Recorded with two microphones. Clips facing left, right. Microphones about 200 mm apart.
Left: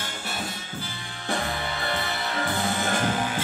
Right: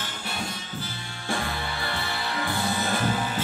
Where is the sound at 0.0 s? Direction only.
45° left (ahead or behind).